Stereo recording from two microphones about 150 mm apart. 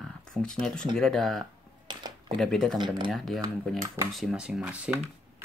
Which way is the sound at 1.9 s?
30° right (ahead or behind).